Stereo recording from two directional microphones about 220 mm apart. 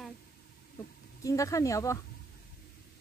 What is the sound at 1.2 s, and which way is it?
Speech, 15° left (ahead or behind).